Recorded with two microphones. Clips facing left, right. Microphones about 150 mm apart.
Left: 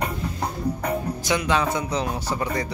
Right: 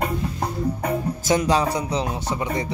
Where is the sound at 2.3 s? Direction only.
20° right (ahead or behind).